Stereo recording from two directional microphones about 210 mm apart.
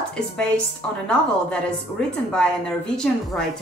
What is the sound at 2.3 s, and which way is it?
A woman's voice, 5° left (ahead or behind).